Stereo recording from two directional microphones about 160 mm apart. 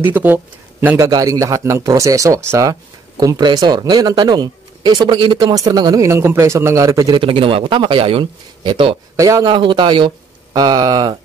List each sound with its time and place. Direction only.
0.0 s speech: 10° right (ahead or behind)
7.2 s speech: 35° right (ahead or behind)
9.1 s speech: 20° right (ahead or behind)